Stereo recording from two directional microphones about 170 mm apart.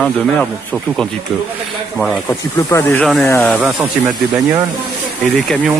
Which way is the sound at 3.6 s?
15° right (ahead or behind).